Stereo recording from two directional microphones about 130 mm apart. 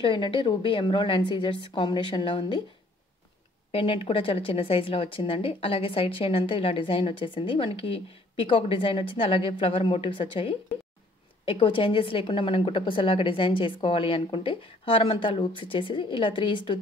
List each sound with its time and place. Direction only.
0.0 s a woman's voice: 40° left (ahead or behind)
3.7 s a woman's voice: 45° left (ahead or behind)